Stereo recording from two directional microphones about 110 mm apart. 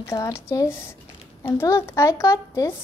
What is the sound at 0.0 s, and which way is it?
A woman's voice, 30° left (ahead or behind).